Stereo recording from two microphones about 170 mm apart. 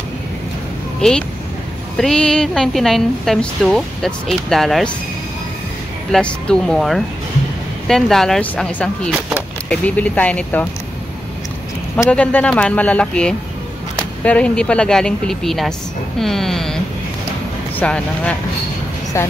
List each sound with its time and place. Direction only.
1.0 s a woman's voice: 5° left (ahead or behind)
6.1 s a woman's voice: 5° left (ahead or behind)
12.1 s a woman's voice: 10° left (ahead or behind)